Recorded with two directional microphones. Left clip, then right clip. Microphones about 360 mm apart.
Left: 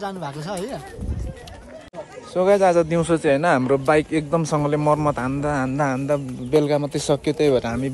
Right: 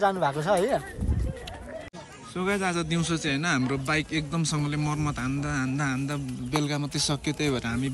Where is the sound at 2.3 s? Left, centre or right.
Centre.